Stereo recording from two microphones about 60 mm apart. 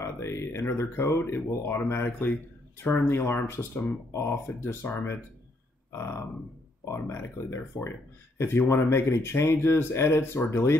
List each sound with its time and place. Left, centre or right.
0.0 s speech: left